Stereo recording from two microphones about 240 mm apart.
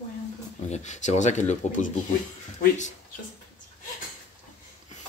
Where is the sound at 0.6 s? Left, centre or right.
Left.